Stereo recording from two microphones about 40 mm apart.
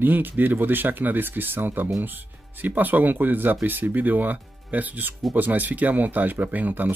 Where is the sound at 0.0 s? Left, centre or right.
Right.